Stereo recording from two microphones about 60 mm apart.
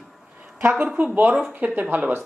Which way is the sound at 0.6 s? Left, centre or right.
Right.